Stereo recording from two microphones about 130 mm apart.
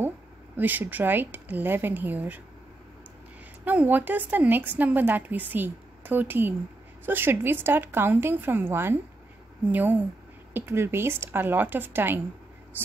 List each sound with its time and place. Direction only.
0.6 s a woman's voice: 15° right (ahead or behind)
3.6 s a woman's voice: 15° right (ahead or behind)